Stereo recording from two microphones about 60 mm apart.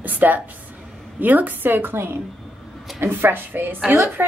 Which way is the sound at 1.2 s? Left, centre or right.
Right.